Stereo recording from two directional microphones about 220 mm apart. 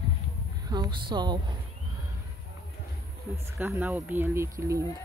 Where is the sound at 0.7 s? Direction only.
20° right (ahead or behind).